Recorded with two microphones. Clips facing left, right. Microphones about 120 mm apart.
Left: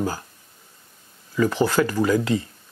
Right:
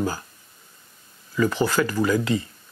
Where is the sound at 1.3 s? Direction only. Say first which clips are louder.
Left 2 dB; 35° left (ahead or behind).